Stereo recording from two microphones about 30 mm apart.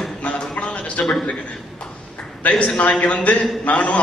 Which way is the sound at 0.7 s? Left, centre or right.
Left.